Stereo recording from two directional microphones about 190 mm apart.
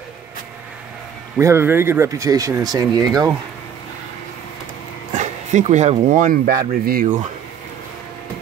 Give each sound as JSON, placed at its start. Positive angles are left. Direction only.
{"t": 1.4, "sound": "speech", "side_deg": -15}
{"t": 5.1, "sound": "speech", "side_deg": -40}